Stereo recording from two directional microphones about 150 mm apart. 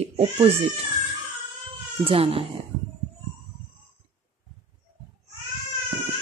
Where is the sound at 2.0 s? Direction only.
40° right (ahead or behind).